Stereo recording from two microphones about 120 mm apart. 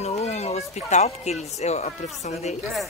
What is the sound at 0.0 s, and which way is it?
Speech, 65° left (ahead or behind).